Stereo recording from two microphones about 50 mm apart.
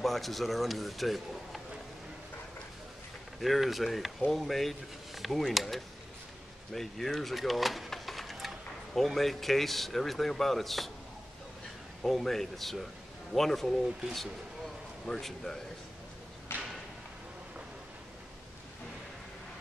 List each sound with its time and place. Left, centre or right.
0.0 s a man's voice: centre
3.3 s a man's voice: centre
12.0 s a man's voice: centre
15.0 s a man's voice: centre
16.5 s a sound: left